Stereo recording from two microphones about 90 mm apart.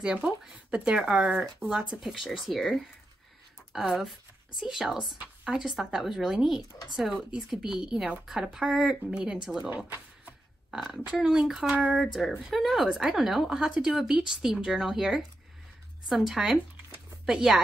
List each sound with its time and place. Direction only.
0.0 s a woman's voice: 10° right (ahead or behind)